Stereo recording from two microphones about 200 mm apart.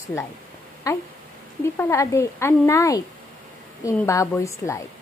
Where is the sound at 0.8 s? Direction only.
15° left (ahead or behind).